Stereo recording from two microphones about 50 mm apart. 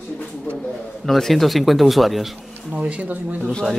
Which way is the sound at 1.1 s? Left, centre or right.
Centre.